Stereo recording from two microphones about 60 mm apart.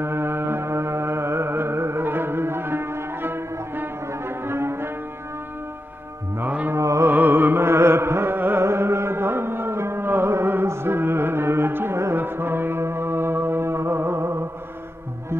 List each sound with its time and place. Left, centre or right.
0.0 s music: right
6.4 s mantra: right
6.7 s music: right
7.1 s music: right
8.6 s music: right